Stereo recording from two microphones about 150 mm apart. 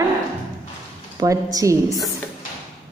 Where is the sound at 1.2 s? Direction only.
25° right (ahead or behind).